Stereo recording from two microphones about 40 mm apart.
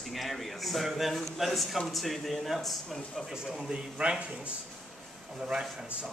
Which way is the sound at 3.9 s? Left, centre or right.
Right.